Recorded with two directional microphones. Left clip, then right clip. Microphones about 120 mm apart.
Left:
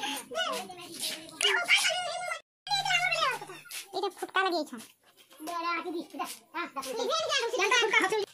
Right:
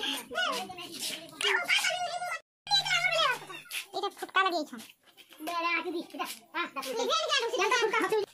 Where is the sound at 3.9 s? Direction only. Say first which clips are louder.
Right 1 dB; 15° left (ahead or behind).